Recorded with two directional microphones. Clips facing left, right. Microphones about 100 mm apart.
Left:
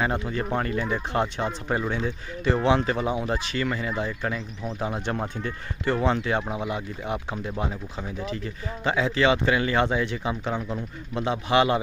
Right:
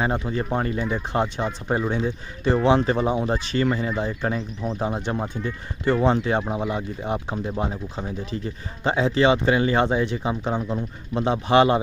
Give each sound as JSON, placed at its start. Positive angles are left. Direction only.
{"t": 0.0, "sound": "speech", "side_deg": -25}
{"t": 6.0, "sound": "speech", "side_deg": -30}